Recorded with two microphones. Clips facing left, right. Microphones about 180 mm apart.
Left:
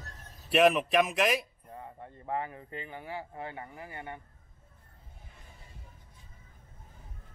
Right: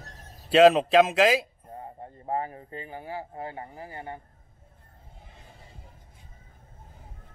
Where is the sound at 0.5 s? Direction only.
80° right.